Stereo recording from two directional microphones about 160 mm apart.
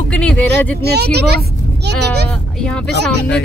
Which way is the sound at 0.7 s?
90° right.